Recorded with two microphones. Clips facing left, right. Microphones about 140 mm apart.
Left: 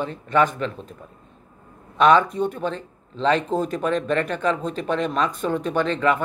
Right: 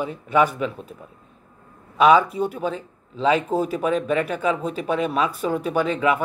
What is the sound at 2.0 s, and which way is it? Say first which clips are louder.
Speech: right 1 dB; 5° right (ahead or behind).